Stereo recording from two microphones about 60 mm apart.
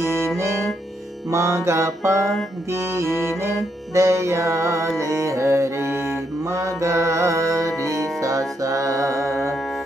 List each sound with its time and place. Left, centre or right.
0.0 s music: right
1.3 s mantra: right
3.9 s music: right